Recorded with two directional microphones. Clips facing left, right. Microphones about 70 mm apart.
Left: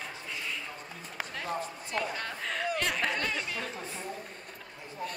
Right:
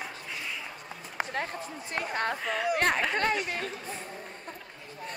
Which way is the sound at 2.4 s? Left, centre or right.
Centre.